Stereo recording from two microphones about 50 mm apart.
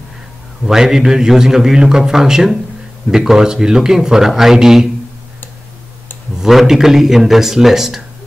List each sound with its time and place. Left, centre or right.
0.7 s a man's voice: centre
6.4 s a man's voice: centre